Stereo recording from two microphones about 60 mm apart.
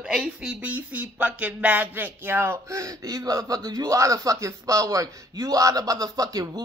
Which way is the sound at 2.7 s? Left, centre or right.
Right.